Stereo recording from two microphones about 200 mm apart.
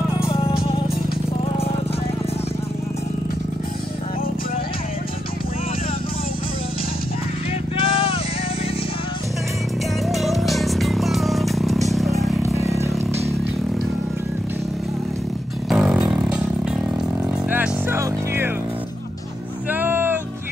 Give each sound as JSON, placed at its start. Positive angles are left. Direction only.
{"t": 0.3, "sound": "music", "side_deg": 25}
{"t": 7.8, "sound": "a sound", "side_deg": 25}
{"t": 10.0, "sound": "music", "side_deg": 0}
{"t": 11.9, "sound": "vehicle", "side_deg": 0}
{"t": 12.4, "sound": "vehicle", "side_deg": -15}
{"t": 15.7, "sound": "a sound", "side_deg": -5}
{"t": 17.5, "sound": "music", "side_deg": -10}
{"t": 19.7, "sound": "music", "side_deg": -10}